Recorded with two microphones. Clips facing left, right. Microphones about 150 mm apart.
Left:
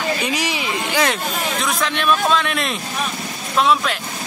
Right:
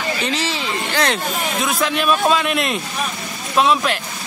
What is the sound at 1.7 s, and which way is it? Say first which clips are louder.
Speech: right 1 dB; 5° right (ahead or behind).